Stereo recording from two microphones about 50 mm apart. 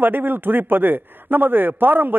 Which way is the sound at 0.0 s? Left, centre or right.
Right.